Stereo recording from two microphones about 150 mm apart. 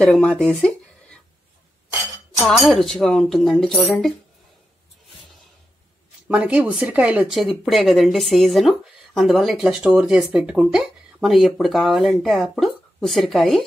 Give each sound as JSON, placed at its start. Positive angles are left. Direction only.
{"t": 0.0, "sound": "speech", "side_deg": 10}
{"t": 2.4, "sound": "speech", "side_deg": 0}
{"t": 6.2, "sound": "speech", "side_deg": -10}